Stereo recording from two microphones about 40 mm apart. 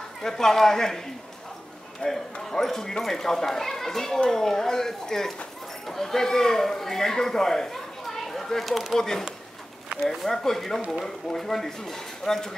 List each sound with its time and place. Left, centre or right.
0.2 s speech: centre
2.0 s speech: left
2.5 s speech: centre
10.2 s speech: centre